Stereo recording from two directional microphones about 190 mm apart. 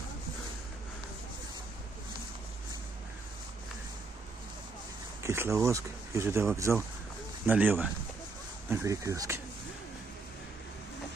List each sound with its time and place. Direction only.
5.2 s speech: 15° right (ahead or behind)